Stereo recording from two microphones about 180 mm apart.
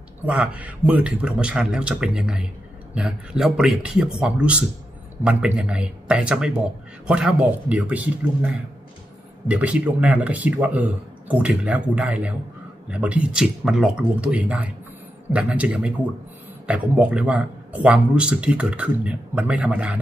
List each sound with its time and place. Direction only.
0.2 s a man's voice: 5° right (ahead or behind)
9.5 s a man's voice: 5° right (ahead or behind)